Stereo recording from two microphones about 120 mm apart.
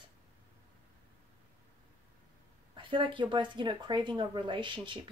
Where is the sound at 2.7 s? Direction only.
45° right (ahead or behind).